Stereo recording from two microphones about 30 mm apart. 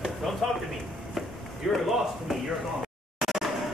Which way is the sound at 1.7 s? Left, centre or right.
Centre.